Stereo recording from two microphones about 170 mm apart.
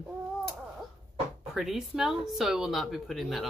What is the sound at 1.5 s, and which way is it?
Speech, centre (ahead or behind).